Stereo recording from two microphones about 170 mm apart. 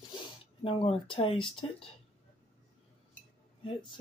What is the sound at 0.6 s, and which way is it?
Speech, 35° left (ahead or behind).